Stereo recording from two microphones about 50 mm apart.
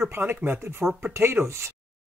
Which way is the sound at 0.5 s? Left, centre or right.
Right.